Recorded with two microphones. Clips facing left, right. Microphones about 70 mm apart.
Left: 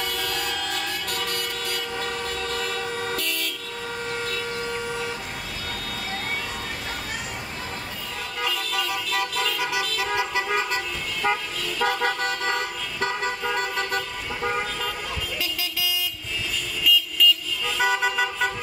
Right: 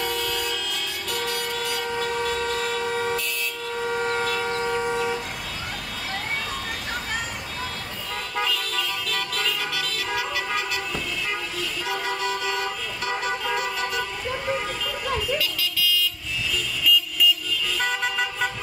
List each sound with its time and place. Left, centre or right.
0.1 s vehicle: left
2.2 s train: right
3.2 s vehicle: left
3.8 s vehicle: right
8.7 s vehicle: centre
11.8 s vehicle: left
15.3 s vehicle: left
16.8 s vehicle: centre